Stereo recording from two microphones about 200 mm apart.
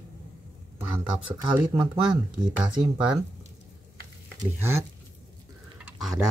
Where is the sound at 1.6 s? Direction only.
20° right (ahead or behind).